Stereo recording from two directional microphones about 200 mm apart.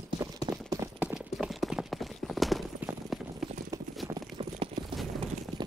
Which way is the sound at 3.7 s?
15° right (ahead or behind).